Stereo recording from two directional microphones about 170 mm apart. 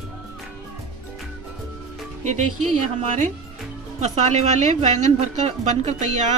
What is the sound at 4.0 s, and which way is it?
A woman's voice, 40° right (ahead or behind).